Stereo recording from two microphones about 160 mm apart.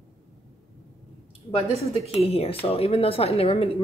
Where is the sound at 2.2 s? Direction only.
40° left (ahead or behind).